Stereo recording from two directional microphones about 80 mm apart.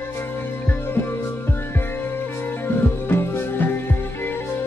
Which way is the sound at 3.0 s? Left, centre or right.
Left.